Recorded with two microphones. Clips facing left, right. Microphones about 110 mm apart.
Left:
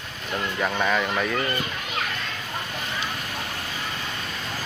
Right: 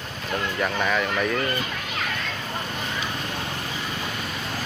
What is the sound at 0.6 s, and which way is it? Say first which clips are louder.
Speech: left 1 dB; 5° left (ahead or behind).